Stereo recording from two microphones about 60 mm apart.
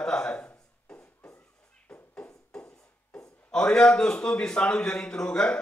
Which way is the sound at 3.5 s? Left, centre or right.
Centre.